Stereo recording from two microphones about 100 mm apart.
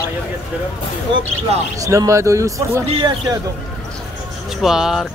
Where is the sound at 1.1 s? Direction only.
50° right (ahead or behind).